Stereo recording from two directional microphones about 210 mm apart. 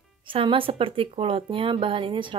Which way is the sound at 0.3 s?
25° right (ahead or behind).